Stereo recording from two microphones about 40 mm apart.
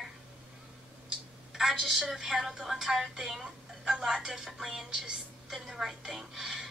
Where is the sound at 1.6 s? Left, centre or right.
Centre.